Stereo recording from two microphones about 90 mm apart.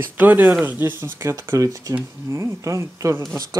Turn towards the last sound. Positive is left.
turn(degrees=-30)  # may be behind; listen again after turning